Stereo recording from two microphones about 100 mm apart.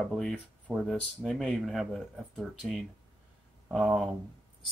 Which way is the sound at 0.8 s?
5° left (ahead or behind).